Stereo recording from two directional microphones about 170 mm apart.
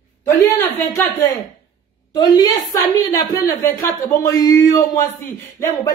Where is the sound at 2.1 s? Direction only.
25° left (ahead or behind).